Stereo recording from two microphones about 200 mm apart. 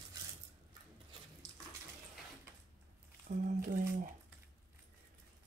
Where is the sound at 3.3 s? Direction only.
40° right (ahead or behind).